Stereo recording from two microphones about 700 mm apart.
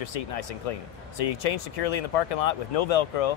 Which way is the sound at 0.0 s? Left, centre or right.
Left.